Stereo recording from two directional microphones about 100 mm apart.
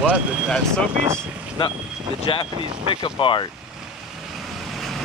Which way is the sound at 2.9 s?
55° left (ahead or behind).